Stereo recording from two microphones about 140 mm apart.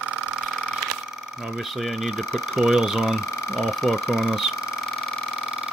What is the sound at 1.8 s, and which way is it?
Speech, centre (ahead or behind).